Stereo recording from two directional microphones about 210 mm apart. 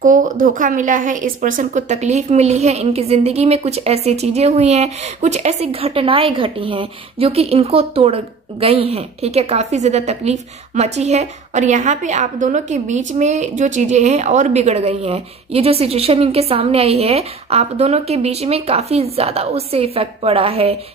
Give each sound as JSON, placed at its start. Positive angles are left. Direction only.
{"t": 0.0, "sound": "a woman's voice", "side_deg": -40}